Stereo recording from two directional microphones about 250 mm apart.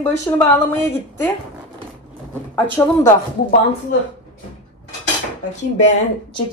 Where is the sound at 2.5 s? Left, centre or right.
Centre.